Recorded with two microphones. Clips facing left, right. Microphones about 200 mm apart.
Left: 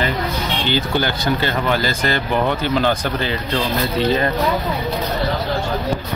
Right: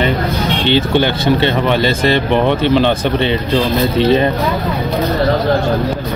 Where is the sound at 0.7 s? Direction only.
25° right (ahead or behind).